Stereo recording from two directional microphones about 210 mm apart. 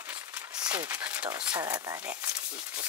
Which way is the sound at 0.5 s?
20° right (ahead or behind).